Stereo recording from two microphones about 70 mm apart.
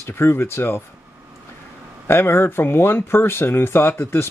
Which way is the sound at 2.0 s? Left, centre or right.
Left.